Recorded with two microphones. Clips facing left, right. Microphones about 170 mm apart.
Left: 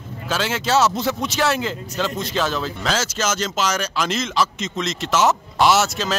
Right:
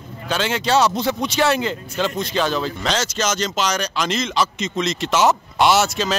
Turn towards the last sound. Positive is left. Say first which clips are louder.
# right 1 dB
turn(degrees=0)  # may be behind; listen again after turning